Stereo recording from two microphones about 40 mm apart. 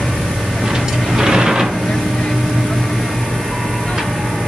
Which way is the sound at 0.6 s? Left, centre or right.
Centre.